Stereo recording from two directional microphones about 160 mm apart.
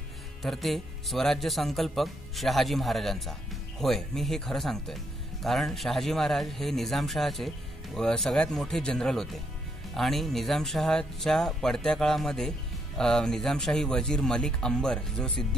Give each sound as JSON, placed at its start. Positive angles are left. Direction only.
{"t": 0.4, "sound": "speech", "side_deg": 0}